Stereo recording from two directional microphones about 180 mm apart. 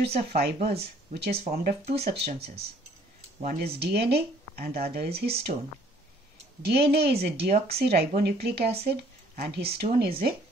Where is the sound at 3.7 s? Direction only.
65° right (ahead or behind).